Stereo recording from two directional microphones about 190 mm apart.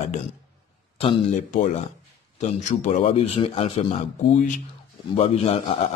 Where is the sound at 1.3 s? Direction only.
40° left (ahead or behind).